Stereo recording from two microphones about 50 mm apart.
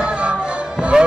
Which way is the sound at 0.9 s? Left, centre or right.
Centre.